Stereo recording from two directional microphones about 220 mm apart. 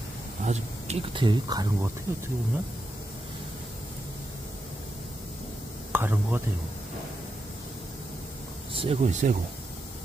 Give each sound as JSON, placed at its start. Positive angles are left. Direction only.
{"t": 0.4, "sound": "speech", "side_deg": -30}
{"t": 5.9, "sound": "speech", "side_deg": -10}
{"t": 8.7, "sound": "speech", "side_deg": -30}